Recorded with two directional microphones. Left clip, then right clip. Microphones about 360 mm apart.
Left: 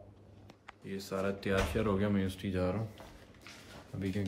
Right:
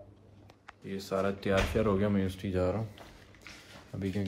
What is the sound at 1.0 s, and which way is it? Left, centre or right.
Speech, right.